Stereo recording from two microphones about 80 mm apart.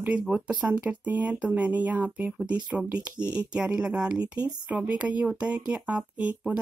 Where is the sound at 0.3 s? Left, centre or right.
Centre.